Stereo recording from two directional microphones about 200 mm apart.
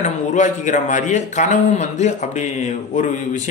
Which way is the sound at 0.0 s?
40° left (ahead or behind).